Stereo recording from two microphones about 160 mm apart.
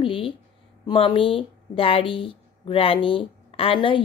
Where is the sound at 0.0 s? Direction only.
35° left (ahead or behind).